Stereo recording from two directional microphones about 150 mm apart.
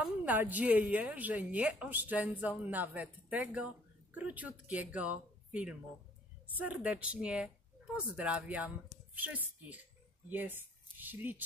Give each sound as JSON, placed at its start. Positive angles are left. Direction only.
{"t": 0.0, "sound": "a woman's voice", "side_deg": -10}